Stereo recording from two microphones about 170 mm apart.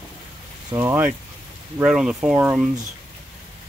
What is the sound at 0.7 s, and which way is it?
Speech, 10° right (ahead or behind).